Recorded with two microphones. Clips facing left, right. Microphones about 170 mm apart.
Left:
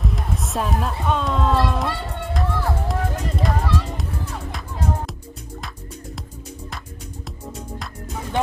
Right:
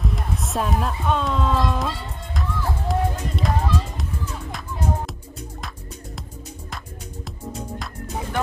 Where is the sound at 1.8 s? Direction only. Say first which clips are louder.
Left 3 dB; 70° left (ahead or behind).